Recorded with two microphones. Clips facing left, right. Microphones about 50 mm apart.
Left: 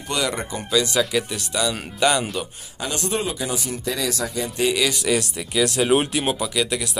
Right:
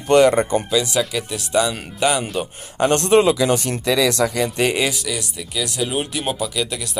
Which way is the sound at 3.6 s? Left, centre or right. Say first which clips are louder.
Right 7 dB; right.